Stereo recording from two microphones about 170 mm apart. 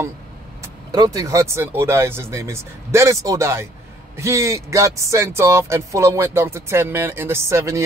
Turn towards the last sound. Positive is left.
turn(degrees=-15)  # may be behind; listen again after turning